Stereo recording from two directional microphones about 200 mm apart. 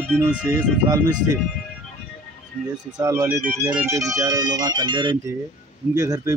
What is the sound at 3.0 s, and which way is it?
Speech, 15° right (ahead or behind).